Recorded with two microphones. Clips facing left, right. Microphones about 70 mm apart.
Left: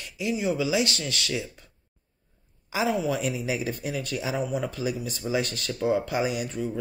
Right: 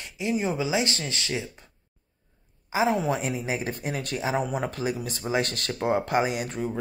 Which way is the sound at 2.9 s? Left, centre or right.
Right.